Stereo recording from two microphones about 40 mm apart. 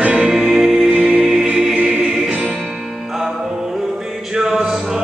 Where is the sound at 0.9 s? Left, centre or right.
Right.